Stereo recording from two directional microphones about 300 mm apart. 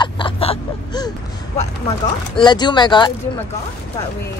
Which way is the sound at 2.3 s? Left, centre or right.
Centre.